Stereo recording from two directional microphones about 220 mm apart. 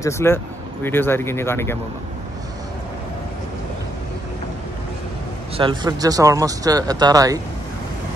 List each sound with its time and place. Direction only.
0.0 s speech: 10° left (ahead or behind)
5.6 s speech: 20° right (ahead or behind)